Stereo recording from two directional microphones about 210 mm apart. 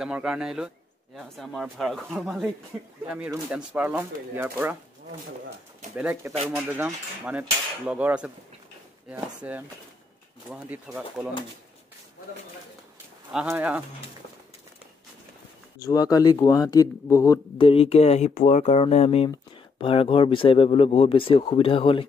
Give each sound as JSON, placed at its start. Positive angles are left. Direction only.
{"t": 0.0, "sound": "cutlery", "side_deg": -5}
{"t": 3.1, "sound": "speech", "side_deg": -5}
{"t": 5.9, "sound": "speech", "side_deg": -5}
{"t": 6.5, "sound": "cutlery", "side_deg": -5}
{"t": 9.1, "sound": "speech", "side_deg": -10}
{"t": 13.3, "sound": "speech", "side_deg": -5}
{"t": 15.8, "sound": "speech", "side_deg": 15}
{"t": 17.6, "sound": "speech", "side_deg": 30}